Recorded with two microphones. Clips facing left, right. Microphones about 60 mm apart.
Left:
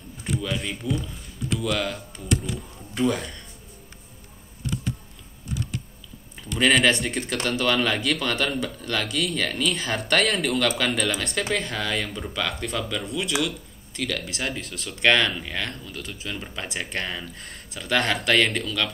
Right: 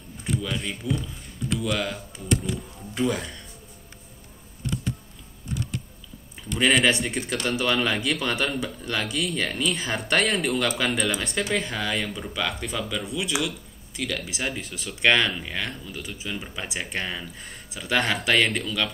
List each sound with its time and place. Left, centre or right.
0.4 s speech: centre
6.5 s speech: centre